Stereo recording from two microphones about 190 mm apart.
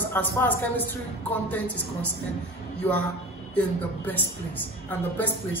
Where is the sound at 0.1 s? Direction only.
10° left (ahead or behind).